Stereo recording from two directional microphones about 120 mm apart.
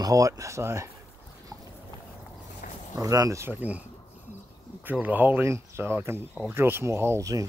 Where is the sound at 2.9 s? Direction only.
30° right (ahead or behind).